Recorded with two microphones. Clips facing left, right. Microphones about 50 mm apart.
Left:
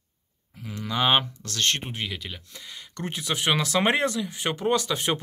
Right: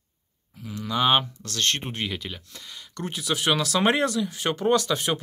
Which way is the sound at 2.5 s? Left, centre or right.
Centre.